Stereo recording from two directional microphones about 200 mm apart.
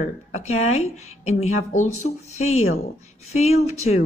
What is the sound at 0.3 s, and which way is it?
A woman's voice, 35° left (ahead or behind).